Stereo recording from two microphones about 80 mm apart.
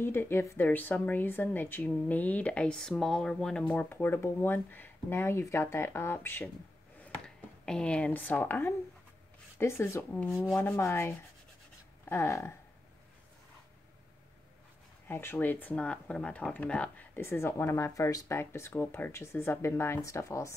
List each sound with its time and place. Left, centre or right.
0.0 s speech: left
7.2 s a sound: centre
8.1 s speech: left
15.0 s speech: left